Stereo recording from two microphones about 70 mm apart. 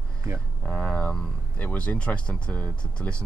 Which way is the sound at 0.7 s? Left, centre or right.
Centre.